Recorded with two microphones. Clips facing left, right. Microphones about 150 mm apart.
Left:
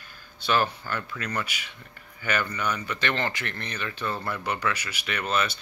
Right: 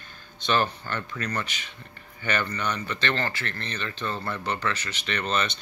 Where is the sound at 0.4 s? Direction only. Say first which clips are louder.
Even; 10° left (ahead or behind).